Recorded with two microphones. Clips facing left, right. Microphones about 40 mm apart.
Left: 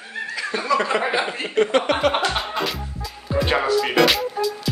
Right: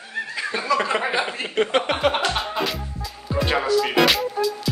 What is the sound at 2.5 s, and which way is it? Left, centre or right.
Music, centre.